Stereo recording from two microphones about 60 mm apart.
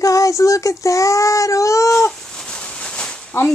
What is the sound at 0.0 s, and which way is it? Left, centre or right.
Speech, left.